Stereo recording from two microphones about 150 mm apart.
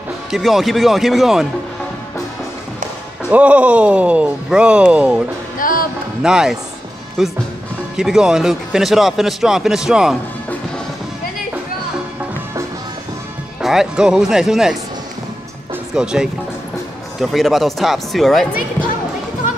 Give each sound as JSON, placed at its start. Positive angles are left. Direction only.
{"t": 0.3, "sound": "speech", "side_deg": 0}
{"t": 3.3, "sound": "speech", "side_deg": -10}
{"t": 5.6, "sound": "music", "side_deg": 70}
{"t": 6.2, "sound": "speech", "side_deg": -5}
{"t": 13.6, "sound": "speech", "side_deg": 0}
{"t": 15.9, "sound": "speech", "side_deg": -5}